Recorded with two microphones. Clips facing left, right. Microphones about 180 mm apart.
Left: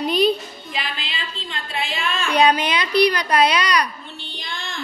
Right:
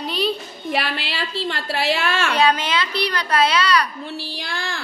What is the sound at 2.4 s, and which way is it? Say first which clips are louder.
A woman's voice: left 4 dB; 15° left (ahead or behind).